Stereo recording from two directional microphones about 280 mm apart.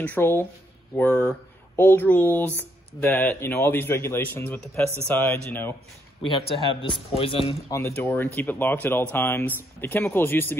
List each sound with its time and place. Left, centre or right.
0.0 s a man's voice: centre
6.5 s a man's voice: centre
7.8 s a man's voice: centre